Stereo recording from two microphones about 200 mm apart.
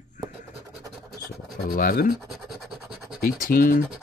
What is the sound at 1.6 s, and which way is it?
Speech, 45° left (ahead or behind).